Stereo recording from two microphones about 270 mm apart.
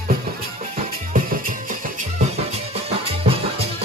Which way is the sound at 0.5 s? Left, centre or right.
Right.